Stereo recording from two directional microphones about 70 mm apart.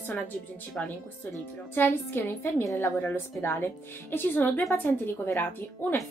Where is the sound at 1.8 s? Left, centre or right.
Left.